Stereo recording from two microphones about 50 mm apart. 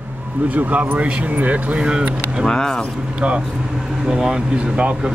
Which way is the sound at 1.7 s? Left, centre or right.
Centre.